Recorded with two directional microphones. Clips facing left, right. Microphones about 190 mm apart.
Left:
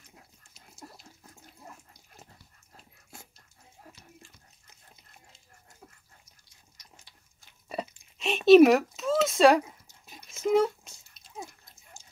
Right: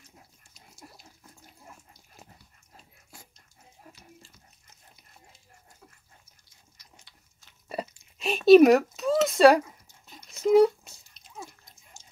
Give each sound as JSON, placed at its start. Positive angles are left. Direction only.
{"t": 7.6, "sound": "chewing", "side_deg": 0}
{"t": 8.2, "sound": "speech", "side_deg": 0}
{"t": 8.9, "sound": "a sound", "side_deg": 0}